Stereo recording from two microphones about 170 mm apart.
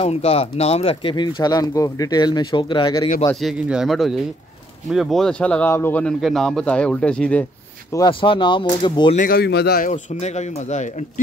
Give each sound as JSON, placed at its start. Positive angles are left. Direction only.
{"t": 0.0, "sound": "speech", "side_deg": 35}
{"t": 3.3, "sound": "speech", "side_deg": -5}
{"t": 7.9, "sound": "speech", "side_deg": 25}
{"t": 9.1, "sound": "a man's voice", "side_deg": 55}
{"t": 9.8, "sound": "speech", "side_deg": 40}